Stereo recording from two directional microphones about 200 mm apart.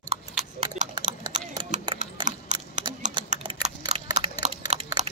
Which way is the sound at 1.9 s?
20° right (ahead or behind).